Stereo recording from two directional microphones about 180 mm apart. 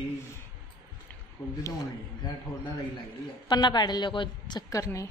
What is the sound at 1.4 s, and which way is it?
Speech, 15° left (ahead or behind).